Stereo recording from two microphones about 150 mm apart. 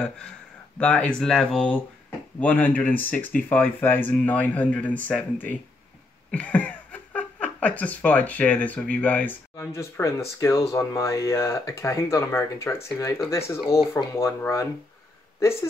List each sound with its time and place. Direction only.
0.7 s speech: 10° left (ahead or behind)